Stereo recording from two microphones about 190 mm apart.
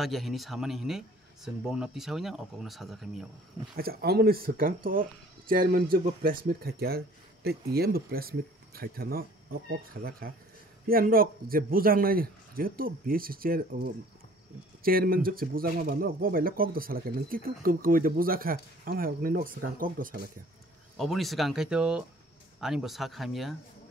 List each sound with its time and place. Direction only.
0.0 s speech: centre (ahead or behind)
3.7 s speech: 55° right (ahead or behind)
14.8 s speech: 50° right (ahead or behind)
20.9 s speech: centre (ahead or behind)